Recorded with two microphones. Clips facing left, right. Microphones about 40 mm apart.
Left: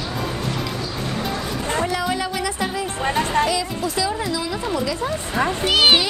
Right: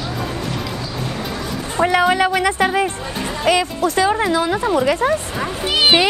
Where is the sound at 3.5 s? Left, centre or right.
Right.